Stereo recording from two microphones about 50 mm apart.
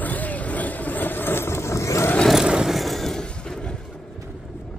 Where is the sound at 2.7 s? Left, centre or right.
Centre.